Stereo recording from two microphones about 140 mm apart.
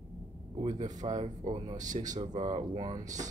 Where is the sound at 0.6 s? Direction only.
55° right (ahead or behind).